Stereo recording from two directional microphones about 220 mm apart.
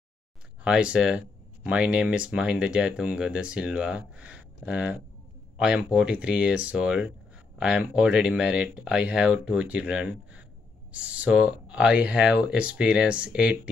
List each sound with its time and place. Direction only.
0.7 s speech: 5° right (ahead or behind)